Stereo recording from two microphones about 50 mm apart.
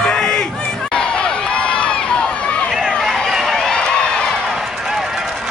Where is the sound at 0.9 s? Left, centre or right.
Centre.